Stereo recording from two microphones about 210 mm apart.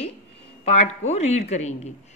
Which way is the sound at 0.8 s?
30° left (ahead or behind).